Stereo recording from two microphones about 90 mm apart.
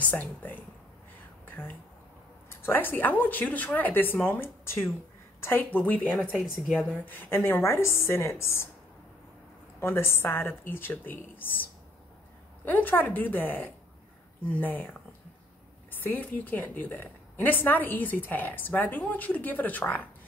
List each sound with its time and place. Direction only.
0.0 s a woman's voice: 20° left (ahead or behind)
1.4 s a sound: 20° left (ahead or behind)
2.5 s a woman's voice: 25° left (ahead or behind)
6.0 s speech: centre (ahead or behind)
7.1 s a woman's voice: 25° left (ahead or behind)
9.8 s a woman's voice: 25° left (ahead or behind)
12.6 s a woman's voice: 20° left (ahead or behind)